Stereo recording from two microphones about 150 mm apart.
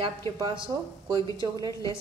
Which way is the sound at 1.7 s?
20° left (ahead or behind).